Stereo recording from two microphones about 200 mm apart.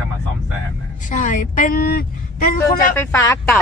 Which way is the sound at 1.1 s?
40° left (ahead or behind).